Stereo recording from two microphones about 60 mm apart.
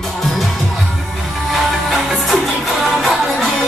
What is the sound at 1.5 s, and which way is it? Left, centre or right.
Music, centre.